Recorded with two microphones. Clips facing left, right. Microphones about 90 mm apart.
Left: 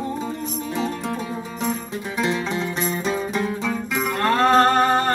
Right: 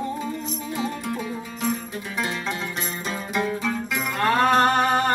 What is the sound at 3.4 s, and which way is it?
Music, centre (ahead or behind).